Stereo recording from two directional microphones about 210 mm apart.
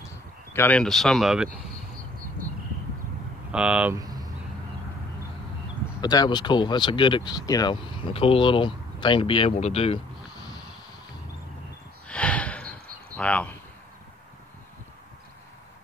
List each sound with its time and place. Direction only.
0.0 s speech: 10° left (ahead or behind)
3.5 s speech: 5° right (ahead or behind)
4.0 s a sound: 20° right (ahead or behind)
5.9 s speech: 20° left (ahead or behind)
12.1 s snort: 5° left (ahead or behind)